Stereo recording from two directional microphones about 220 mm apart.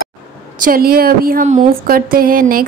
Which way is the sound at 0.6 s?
40° right (ahead or behind).